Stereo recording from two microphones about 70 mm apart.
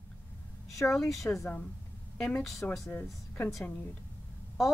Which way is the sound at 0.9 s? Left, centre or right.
Centre.